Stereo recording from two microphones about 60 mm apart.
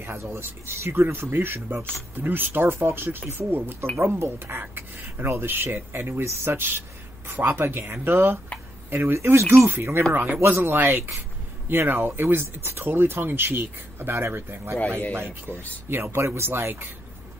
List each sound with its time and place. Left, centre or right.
0.0 s speech: right
9.1 s speech: right